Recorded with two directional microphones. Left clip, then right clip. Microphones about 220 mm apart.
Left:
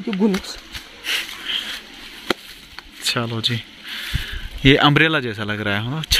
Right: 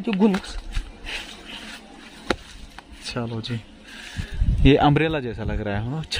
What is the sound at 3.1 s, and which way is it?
Speech, 5° left (ahead or behind).